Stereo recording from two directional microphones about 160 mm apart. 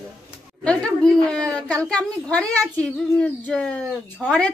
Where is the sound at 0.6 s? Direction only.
5° left (ahead or behind).